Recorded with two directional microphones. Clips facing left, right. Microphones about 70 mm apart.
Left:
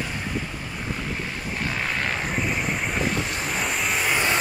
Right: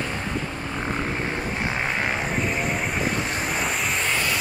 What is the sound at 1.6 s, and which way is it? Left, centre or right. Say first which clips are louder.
Vehicle: left 1 dB; right.